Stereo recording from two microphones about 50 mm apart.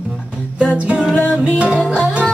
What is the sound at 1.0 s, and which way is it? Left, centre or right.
Mantra, centre.